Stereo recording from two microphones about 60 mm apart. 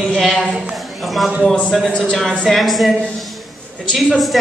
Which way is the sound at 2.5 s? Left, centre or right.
Centre.